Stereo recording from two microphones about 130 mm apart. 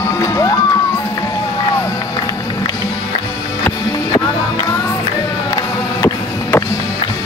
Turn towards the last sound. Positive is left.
turn(degrees=20)  # may be behind; listen again after turning